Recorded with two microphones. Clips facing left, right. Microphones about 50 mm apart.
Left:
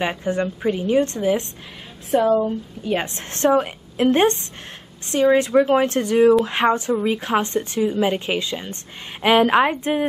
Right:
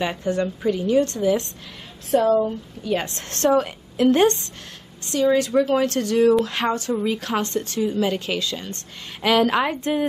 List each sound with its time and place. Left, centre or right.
0.0 s speech: left
2.8 s speech: left